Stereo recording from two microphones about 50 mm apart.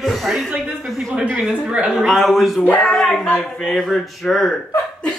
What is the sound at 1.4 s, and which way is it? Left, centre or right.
Speech, right.